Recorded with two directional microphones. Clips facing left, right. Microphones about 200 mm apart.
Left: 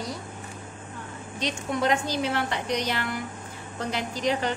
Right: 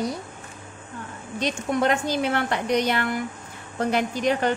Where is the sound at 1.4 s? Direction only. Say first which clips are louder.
Right 4 dB; 55° right (ahead or behind).